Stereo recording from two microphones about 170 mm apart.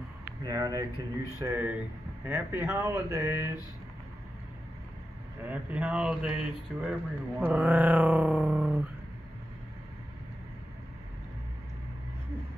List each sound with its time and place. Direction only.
0.2 s a sound: 20° right (ahead or behind)
1.4 s speech: 15° right (ahead or behind)
5.4 s speech: 10° right (ahead or behind)